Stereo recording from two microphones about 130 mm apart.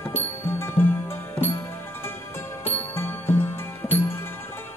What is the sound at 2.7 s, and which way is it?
Music, 15° left (ahead or behind).